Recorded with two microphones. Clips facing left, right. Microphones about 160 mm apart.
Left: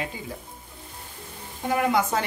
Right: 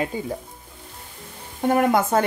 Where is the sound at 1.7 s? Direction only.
50° right (ahead or behind).